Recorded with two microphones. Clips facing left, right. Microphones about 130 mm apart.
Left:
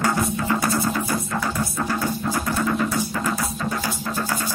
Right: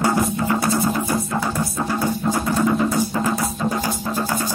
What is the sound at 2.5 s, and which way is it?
Music, 20° right (ahead or behind).